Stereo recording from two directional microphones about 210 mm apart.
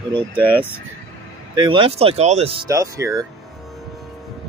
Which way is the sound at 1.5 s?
25° right (ahead or behind).